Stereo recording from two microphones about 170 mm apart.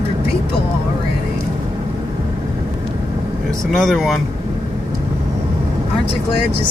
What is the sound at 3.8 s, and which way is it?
Speech, centre (ahead or behind).